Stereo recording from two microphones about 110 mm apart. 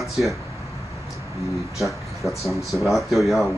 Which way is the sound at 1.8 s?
Centre (ahead or behind).